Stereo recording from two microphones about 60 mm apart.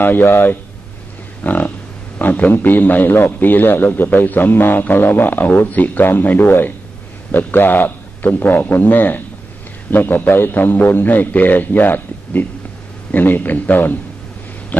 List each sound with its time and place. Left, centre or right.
0.0 s a man's voice: left
1.4 s livestock: left
2.1 s a man's voice: left